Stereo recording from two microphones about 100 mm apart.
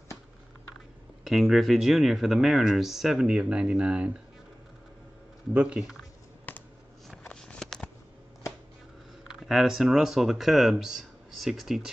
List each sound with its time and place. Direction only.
1.2 s speech: centre (ahead or behind)
5.5 s speech: 10° right (ahead or behind)
6.5 s a sound: 20° left (ahead or behind)
9.3 s speech: 5° right (ahead or behind)